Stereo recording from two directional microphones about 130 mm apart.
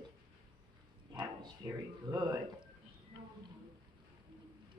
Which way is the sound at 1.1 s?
30° right (ahead or behind).